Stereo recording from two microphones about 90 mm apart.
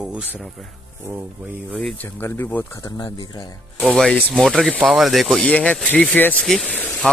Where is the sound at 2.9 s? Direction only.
50° left (ahead or behind).